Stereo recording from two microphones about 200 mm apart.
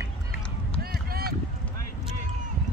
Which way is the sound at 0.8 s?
50° right (ahead or behind).